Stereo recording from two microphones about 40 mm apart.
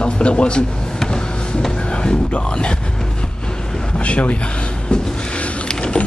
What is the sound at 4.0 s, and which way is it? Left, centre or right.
Speech, left.